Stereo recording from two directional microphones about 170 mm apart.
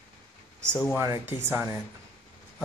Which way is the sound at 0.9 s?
15° right (ahead or behind).